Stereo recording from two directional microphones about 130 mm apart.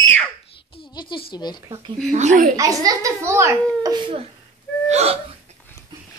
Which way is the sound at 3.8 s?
35° right (ahead or behind).